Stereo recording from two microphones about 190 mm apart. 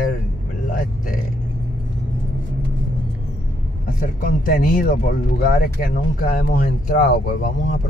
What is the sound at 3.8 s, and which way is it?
Speech, 45° left (ahead or behind).